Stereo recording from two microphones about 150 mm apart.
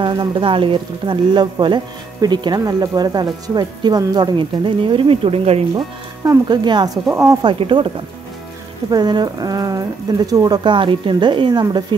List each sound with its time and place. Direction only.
0.0 s speech: 30° right (ahead or behind)
6.2 s speech: 30° right (ahead or behind)
8.9 s speech: 25° right (ahead or behind)